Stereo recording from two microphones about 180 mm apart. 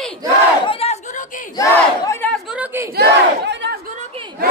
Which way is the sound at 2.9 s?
65° right (ahead or behind).